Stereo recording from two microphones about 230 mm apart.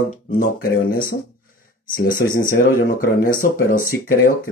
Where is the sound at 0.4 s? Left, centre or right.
Left.